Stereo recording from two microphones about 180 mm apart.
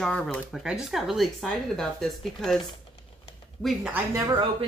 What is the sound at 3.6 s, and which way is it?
Speech, 5° right (ahead or behind).